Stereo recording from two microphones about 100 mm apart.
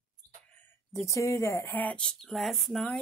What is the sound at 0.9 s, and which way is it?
Speech, 30° left (ahead or behind).